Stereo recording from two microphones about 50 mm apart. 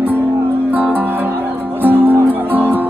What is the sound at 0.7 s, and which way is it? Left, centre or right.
Music, right.